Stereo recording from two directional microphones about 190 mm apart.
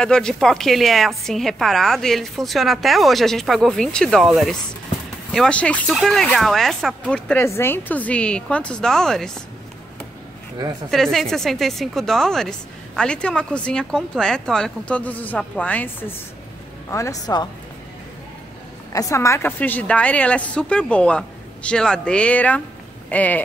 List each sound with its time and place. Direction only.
0.0 s a woman's voice: 5° left (ahead or behind)
10.9 s a woman's voice: centre (ahead or behind); by 17.5 s 20° left (ahead or behind)
18.9 s a woman's voice: 15° left (ahead or behind)